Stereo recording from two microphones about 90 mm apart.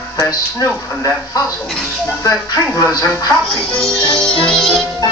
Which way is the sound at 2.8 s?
40° left (ahead or behind).